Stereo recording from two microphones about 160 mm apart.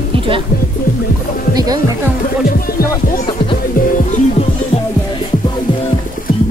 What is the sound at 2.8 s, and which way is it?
Music, 60° left (ahead or behind).